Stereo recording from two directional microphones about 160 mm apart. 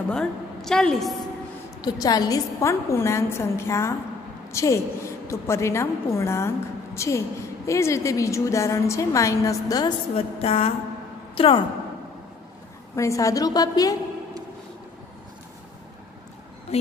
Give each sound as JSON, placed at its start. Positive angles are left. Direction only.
{"t": 0.1, "sound": "a woman's voice", "side_deg": 5}
{"t": 1.8, "sound": "a woman's voice", "side_deg": 25}
{"t": 10.1, "sound": "a sound", "side_deg": 35}
{"t": 12.9, "sound": "a woman's voice", "side_deg": 20}